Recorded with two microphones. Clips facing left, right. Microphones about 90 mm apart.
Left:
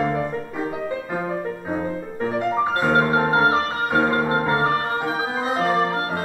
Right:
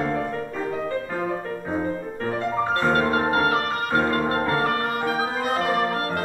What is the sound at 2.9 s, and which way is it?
Music, 25° left (ahead or behind).